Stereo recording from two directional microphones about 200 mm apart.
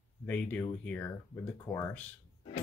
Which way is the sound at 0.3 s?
10° left (ahead or behind).